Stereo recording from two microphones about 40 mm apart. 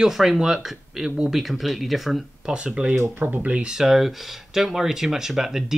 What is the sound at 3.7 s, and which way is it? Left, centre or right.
Speech, centre.